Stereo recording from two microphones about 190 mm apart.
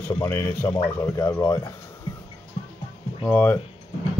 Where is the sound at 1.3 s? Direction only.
20° left (ahead or behind).